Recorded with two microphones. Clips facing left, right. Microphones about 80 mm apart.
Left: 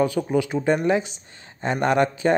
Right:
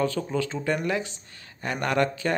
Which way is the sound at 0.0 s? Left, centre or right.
Centre.